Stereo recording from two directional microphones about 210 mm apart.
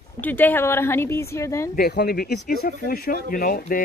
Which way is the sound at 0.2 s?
10° left (ahead or behind).